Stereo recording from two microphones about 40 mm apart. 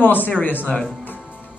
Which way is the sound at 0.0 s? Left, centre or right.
Left.